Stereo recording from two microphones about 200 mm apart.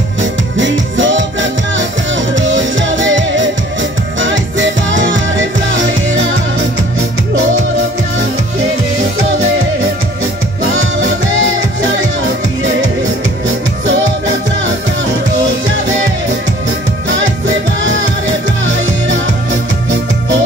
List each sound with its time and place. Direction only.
0.2 s music: 70° right (ahead or behind)
10.7 s music: 75° right (ahead or behind)